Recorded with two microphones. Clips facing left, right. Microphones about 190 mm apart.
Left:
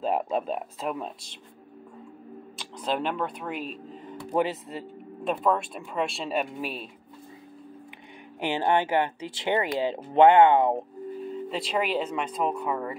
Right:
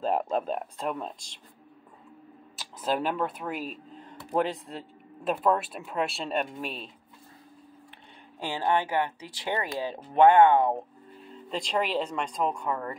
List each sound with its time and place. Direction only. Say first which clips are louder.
0.0 s speech: left 1 dB; 5° left (ahead or behind)
2.5 s speech: even; 5° right (ahead or behind)
8.4 s speech: left 3 dB; 20° left (ahead or behind)
11.5 s speech: even; 5° left (ahead or behind)